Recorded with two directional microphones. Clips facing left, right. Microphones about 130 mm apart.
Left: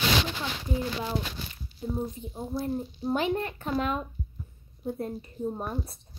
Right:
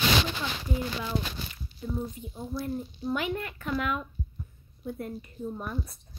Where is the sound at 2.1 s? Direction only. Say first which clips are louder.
Left 2 dB; 30° left (ahead or behind).